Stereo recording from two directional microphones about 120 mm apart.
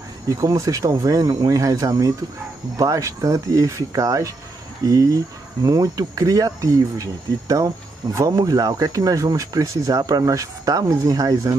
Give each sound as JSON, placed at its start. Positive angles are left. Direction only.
{"t": 0.3, "sound": "speech", "side_deg": -30}